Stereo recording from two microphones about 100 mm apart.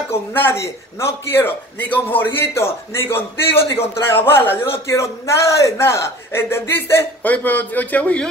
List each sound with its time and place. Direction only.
0.1 s a man's voice: 25° left (ahead or behind)